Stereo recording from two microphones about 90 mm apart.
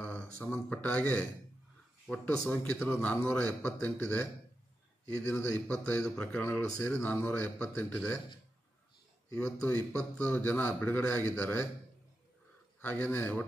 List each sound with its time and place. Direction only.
0.0 s a man's voice: 15° left (ahead or behind)
9.3 s speech: 30° left (ahead or behind)
10.1 s a man's voice: 20° left (ahead or behind)
12.8 s a man's voice: 20° left (ahead or behind)